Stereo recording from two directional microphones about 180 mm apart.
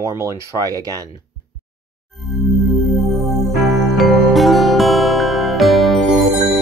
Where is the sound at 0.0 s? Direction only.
15° right (ahead or behind).